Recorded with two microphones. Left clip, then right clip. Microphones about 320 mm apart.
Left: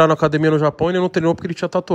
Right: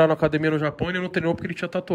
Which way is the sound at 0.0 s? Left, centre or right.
Right.